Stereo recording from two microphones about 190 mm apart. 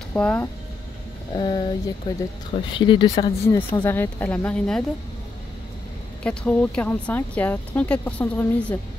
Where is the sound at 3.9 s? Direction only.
10° left (ahead or behind).